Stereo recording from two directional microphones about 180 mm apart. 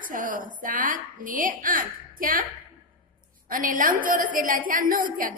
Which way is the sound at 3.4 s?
50° right (ahead or behind).